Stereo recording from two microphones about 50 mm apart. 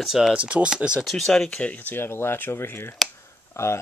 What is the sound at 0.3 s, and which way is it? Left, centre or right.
Speech, right.